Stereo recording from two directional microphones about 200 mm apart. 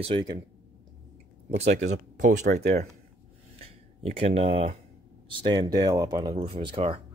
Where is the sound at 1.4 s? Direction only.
35° right (ahead or behind).